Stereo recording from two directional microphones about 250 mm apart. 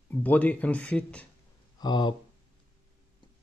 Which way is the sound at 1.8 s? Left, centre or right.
Centre.